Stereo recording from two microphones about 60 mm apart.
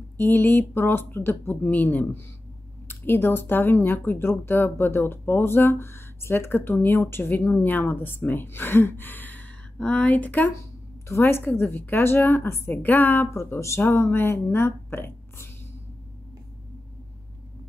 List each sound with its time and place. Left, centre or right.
0.2 s speech: left
9.8 s speech: centre
11.1 s speech: left
13.3 s speech: left